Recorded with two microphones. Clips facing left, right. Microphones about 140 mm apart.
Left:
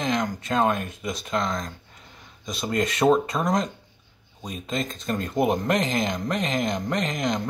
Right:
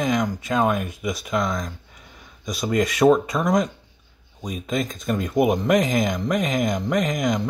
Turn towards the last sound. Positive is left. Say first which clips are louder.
# right 4 dB
turn(degrees=-10)  # may be behind; listen again after turning